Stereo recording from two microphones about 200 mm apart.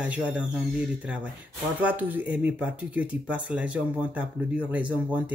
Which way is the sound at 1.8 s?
10° right (ahead or behind).